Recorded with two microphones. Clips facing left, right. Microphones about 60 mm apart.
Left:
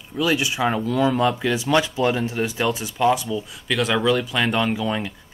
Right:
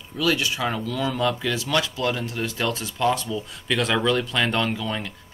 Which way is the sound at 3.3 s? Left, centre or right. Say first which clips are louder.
Left 1 dB; centre.